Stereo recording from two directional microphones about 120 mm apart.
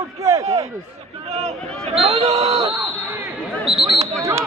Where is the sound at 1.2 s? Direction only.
65° right (ahead or behind).